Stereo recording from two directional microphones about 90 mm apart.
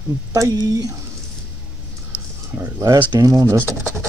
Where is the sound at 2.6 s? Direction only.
30° right (ahead or behind).